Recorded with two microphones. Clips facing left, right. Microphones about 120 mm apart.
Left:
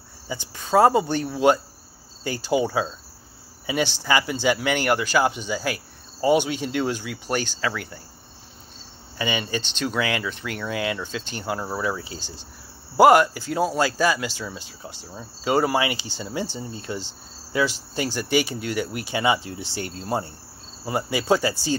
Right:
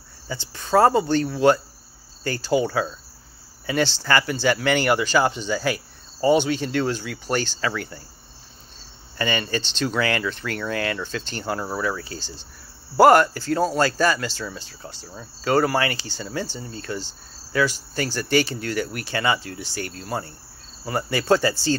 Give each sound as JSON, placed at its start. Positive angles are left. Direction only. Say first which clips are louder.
{"t": 0.3, "sound": "speech", "louder": "right 1 dB", "side_deg": 10}
{"t": 9.2, "sound": "speech", "louder": "right 2 dB", "side_deg": 10}
{"t": 11.8, "sound": "speech", "louder": "right 1 dB", "side_deg": 15}